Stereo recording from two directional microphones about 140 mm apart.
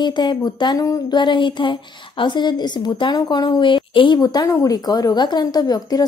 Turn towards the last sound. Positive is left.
turn(degrees=30)  # may be behind; listen again after turning